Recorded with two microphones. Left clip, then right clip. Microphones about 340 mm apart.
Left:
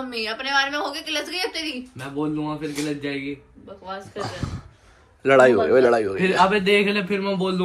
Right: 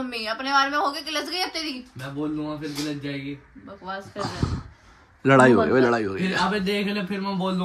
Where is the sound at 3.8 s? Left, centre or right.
Centre.